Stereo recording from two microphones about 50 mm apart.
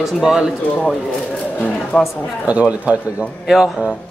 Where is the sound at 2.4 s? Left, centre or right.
Right.